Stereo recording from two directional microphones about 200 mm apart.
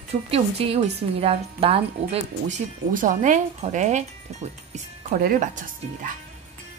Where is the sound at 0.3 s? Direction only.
30° right (ahead or behind).